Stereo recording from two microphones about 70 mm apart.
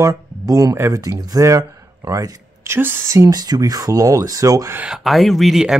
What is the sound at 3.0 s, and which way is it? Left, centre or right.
Speech, right.